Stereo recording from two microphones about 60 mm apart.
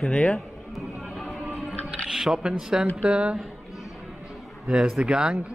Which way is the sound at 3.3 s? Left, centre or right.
Centre.